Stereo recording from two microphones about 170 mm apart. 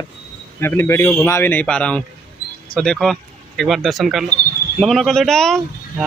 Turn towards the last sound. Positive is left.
turn(degrees=0)  # may be behind; listen again after turning